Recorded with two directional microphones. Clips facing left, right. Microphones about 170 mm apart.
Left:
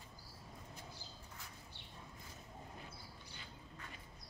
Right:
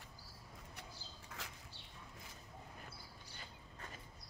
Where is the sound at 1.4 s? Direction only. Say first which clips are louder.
Right 7 dB; 90° right.